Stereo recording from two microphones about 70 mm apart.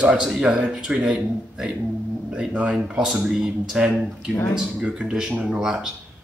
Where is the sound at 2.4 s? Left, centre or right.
Centre.